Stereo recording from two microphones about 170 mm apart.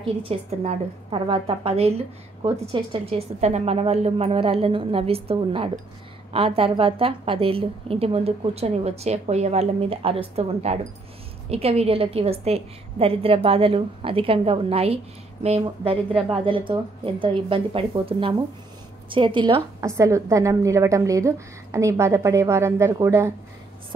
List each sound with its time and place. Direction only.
0.0 s a woman's voice: 35° right (ahead or behind); by 23.3 s 15° right (ahead or behind)